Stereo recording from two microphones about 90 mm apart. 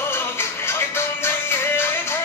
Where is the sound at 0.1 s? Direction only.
25° left (ahead or behind).